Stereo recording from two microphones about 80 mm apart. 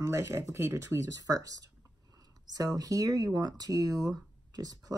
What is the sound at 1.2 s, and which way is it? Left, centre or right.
Speech, right.